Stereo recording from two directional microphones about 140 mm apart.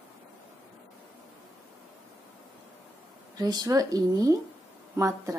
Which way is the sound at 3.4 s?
30° right (ahead or behind).